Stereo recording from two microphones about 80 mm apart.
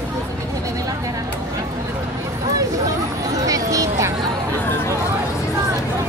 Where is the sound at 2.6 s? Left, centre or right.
Right.